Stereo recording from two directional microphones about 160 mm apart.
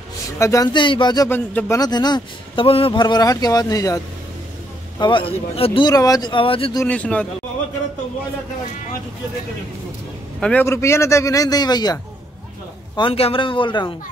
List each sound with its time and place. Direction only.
0.4 s speech: 20° left (ahead or behind)
1.3 s a man's voice: 10° left (ahead or behind)
1.8 s speech: 25° left (ahead or behind)
6.8 s a man's voice: 10° left (ahead or behind)
10.4 s a man's voice: 10° left (ahead or behind); by 13.9 s 30° left (ahead or behind)